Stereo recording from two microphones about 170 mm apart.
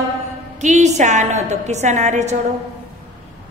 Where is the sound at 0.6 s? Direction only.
45° right (ahead or behind).